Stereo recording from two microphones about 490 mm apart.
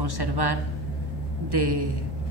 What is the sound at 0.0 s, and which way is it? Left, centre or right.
A woman's voice, right.